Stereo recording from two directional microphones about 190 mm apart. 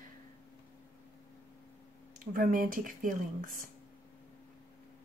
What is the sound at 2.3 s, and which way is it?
Speech, 45° right (ahead or behind).